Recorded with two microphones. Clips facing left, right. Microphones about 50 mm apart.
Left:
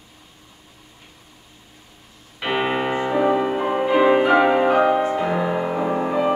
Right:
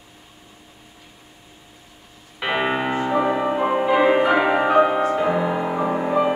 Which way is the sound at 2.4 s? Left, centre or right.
Centre.